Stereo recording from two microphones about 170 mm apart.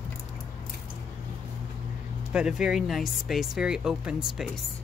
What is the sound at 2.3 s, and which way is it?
Speech, 5° right (ahead or behind).